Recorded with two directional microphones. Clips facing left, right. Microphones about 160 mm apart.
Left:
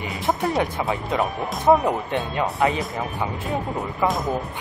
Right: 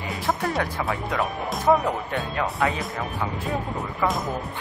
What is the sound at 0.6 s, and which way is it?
Speech, 20° left (ahead or behind).